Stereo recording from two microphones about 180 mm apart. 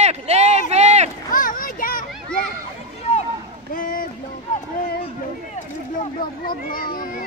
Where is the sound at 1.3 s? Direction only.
50° left (ahead or behind).